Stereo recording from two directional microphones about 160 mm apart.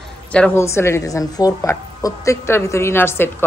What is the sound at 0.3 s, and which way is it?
A woman's voice, 10° left (ahead or behind).